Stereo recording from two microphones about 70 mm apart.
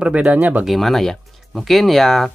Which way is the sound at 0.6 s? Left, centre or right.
Centre.